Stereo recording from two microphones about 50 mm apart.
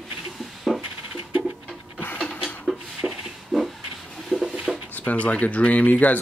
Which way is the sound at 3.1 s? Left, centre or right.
Centre.